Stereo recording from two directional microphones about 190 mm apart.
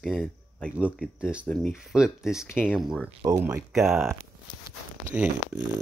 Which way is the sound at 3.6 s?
Centre (ahead or behind).